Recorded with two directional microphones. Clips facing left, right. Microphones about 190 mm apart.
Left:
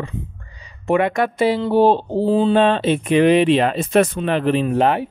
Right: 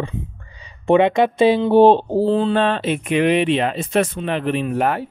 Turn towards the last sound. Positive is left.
turn(degrees=25)  # may be behind; listen again after turning